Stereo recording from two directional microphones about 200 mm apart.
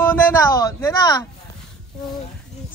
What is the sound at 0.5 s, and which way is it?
Speech, 20° left (ahead or behind).